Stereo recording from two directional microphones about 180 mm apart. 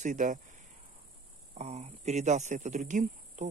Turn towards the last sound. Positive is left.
turn(degrees=-45)  # may be behind; listen again after turning